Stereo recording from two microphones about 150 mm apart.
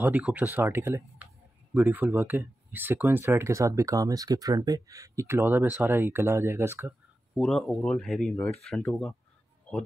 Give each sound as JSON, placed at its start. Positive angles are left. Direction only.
{"t": 0.0, "sound": "speech", "side_deg": -10}
{"t": 7.3, "sound": "speech", "side_deg": 5}